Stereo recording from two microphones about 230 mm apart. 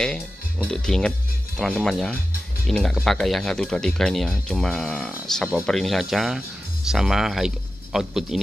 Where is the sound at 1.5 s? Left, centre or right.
Centre.